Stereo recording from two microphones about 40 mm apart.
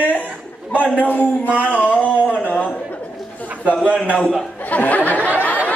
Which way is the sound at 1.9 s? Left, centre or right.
Left.